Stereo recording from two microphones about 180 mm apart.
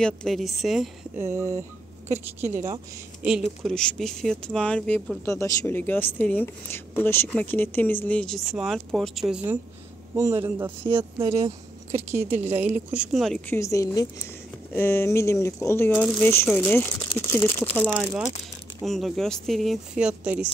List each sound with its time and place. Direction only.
0.0 s speech: 5° left (ahead or behind)
1.1 s speech: 40° right (ahead or behind)
2.4 s speech: 15° right (ahead or behind)
3.3 s a woman's voice: centre (ahead or behind)
11.2 s speech: 35° right (ahead or behind)
12.0 s speech: 15° right (ahead or behind)
13.5 s a woman's voice: 15° left (ahead or behind)
17.8 s speech: 5° right (ahead or behind)